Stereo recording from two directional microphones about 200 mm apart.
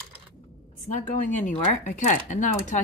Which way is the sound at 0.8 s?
40° left (ahead or behind).